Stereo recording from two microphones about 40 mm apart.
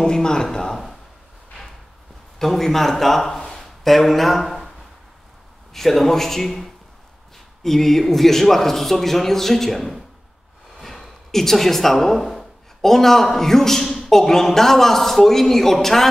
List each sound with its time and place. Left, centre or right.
0.0 s a man's voice: centre
2.3 s speech: centre
5.7 s a man's voice: centre